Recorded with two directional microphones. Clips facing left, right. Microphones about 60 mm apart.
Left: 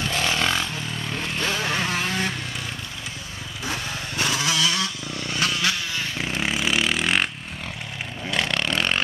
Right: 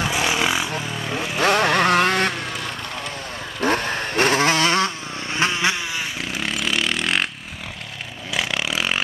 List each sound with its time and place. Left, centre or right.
0.1 s vehicle: centre
1.3 s vehicle: right
3.6 s vehicle: right
6.4 s vehicle: centre
8.3 s vehicle: centre